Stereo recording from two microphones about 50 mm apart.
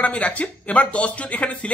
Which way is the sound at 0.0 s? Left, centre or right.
Left.